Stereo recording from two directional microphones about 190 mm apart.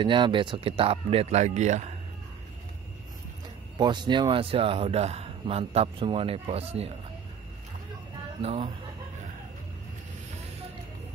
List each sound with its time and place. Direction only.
0.0 s speech: 25° right (ahead or behind)
3.7 s a man's voice: 25° right (ahead or behind)
8.4 s speech: 30° right (ahead or behind)